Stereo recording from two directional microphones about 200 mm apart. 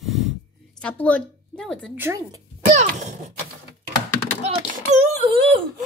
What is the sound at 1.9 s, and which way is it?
Speech, 15° right (ahead or behind).